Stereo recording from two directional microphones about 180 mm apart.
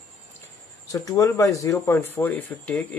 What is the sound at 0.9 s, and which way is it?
Speech, 20° left (ahead or behind).